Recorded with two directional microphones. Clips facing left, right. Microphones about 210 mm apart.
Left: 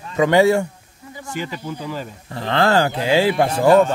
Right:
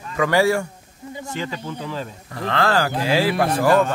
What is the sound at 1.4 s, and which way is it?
Speech, 10° left (ahead or behind).